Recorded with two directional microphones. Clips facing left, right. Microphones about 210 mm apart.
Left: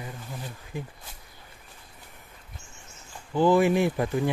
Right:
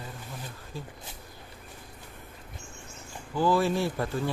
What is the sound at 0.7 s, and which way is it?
Speech, 15° left (ahead or behind).